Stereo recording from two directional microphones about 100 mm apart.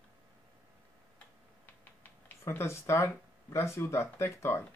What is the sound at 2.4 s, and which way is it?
Speech, 25° left (ahead or behind).